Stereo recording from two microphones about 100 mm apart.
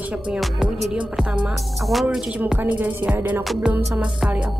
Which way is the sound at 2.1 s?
10° right (ahead or behind).